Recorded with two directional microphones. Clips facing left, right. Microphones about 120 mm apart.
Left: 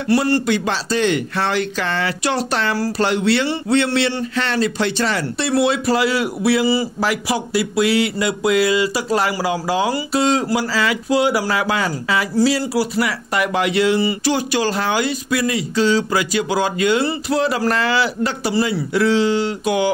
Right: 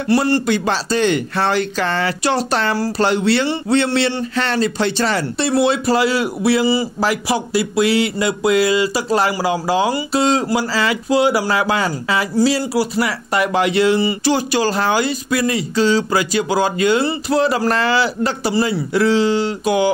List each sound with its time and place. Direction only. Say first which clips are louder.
0.1 s a man's voice: right 1 dB; 35° right (ahead or behind)